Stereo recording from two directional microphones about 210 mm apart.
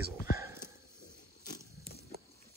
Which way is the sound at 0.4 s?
10° right (ahead or behind).